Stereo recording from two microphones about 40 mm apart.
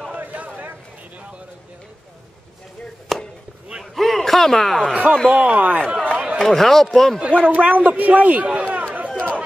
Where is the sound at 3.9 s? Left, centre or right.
Centre.